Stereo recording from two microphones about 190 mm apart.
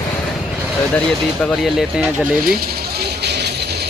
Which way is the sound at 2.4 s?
50° right (ahead or behind).